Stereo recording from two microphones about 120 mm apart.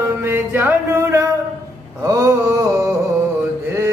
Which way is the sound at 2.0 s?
30° right (ahead or behind).